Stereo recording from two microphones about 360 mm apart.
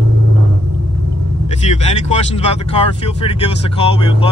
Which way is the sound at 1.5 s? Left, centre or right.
Centre.